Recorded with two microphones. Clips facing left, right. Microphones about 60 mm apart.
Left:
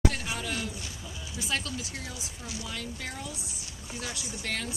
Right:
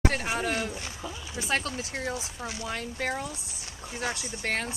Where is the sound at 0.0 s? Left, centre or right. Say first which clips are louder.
Right 3 dB; right.